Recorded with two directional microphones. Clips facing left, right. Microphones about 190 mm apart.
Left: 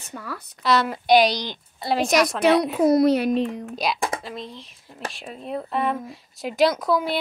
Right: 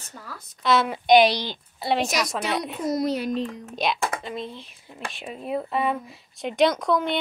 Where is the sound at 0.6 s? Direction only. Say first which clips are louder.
Even; centre (ahead or behind).